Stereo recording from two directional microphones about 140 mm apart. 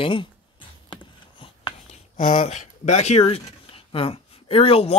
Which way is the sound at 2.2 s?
45° left (ahead or behind).